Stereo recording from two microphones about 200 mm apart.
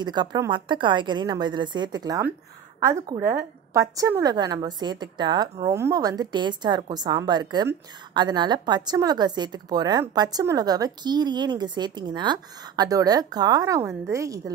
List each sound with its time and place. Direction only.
0.0 s a woman's voice: 20° right (ahead or behind)